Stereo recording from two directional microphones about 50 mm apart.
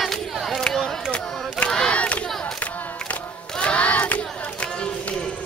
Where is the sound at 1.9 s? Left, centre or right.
Left.